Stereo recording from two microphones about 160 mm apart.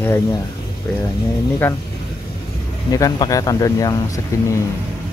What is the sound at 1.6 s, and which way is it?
Speech, 10° left (ahead or behind).